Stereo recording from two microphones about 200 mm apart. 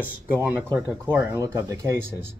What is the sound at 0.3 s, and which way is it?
Speech, 10° right (ahead or behind).